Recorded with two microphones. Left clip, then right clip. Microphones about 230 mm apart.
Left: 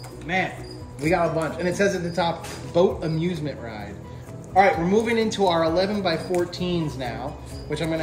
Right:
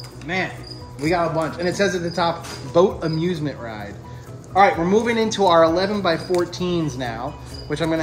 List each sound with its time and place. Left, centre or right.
1.0 s a man's voice: centre